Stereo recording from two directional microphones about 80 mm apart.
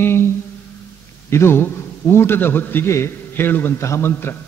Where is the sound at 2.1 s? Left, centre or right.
Left.